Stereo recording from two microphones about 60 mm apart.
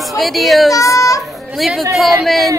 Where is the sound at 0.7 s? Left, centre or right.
Left.